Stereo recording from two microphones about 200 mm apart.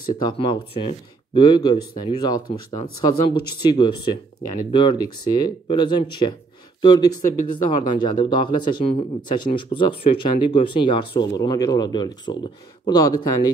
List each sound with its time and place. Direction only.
0.2 s speech: 25° left (ahead or behind)